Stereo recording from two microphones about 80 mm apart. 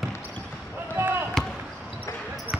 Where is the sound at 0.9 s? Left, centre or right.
Right.